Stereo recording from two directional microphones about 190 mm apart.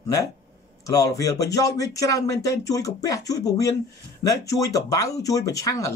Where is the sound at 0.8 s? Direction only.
15° left (ahead or behind).